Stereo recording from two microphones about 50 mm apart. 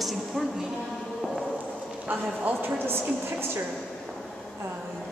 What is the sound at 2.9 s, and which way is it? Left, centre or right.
Speech, right.